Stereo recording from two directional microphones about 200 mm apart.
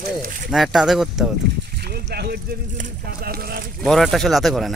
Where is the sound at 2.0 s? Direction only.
55° right (ahead or behind).